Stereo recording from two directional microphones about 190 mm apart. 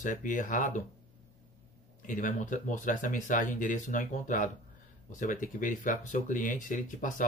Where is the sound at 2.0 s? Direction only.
40° left (ahead or behind).